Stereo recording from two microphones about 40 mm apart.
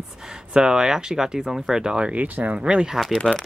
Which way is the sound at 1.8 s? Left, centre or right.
Right.